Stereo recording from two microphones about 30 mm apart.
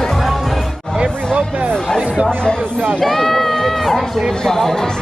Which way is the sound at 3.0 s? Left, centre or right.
Centre.